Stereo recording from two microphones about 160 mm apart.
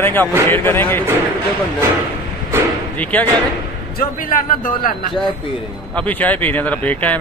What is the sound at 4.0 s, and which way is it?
A man's voice, 60° left (ahead or behind).